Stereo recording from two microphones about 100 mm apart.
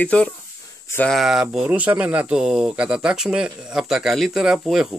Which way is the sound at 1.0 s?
Centre (ahead or behind).